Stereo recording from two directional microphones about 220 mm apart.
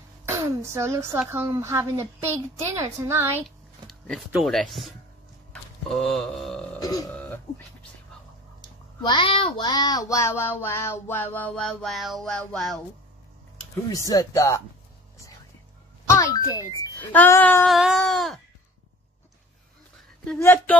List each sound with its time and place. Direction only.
0.2 s speech: 10° right (ahead or behind)
3.4 s speech: centre (ahead or behind)
6.8 s a sound: 15° left (ahead or behind)
9.0 s a child's voice: 20° left (ahead or behind); by 12.8 s centre (ahead or behind)
13.8 s a child's voice: 15° left (ahead or behind)
16.1 s a child's voice: 15° left (ahead or behind)
17.7 s a sound: centre (ahead or behind)
20.2 s a child's voice: 10° left (ahead or behind)